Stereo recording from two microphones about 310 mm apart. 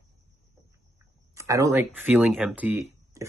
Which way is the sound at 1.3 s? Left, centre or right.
Centre.